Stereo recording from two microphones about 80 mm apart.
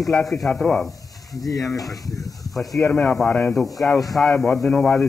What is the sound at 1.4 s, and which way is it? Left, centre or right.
Speech, left.